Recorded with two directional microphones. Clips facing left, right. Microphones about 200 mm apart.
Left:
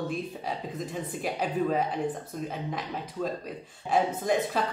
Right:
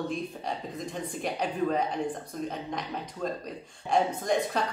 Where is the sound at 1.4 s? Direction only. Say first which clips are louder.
Left 1 dB; 5° left (ahead or behind).